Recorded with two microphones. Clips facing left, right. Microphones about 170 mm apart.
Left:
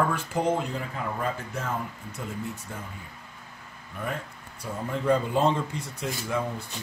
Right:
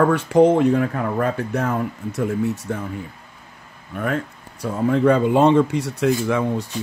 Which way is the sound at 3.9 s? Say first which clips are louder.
Right 10 dB; 65° right (ahead or behind).